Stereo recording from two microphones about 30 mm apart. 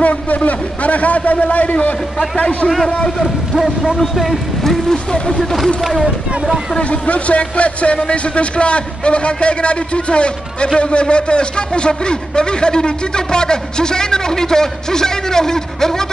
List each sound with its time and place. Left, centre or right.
0.0 s a man's voice: left
2.3 s a man's voice: left
3.5 s speech: centre
4.9 s a man's voice: left
5.4 s speech: centre
6.8 s a man's voice: left; by 16.1 s centre